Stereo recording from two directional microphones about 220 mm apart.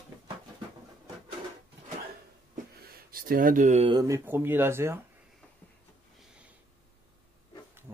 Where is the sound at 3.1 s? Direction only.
40° right (ahead or behind); by 4.9 s 10° right (ahead or behind).